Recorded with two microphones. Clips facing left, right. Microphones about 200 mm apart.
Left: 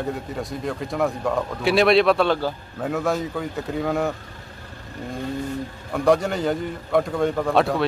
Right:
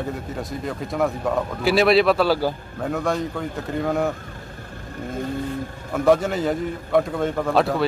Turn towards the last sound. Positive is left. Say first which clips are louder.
# even
turn(degrees=0)  # may be behind; listen again after turning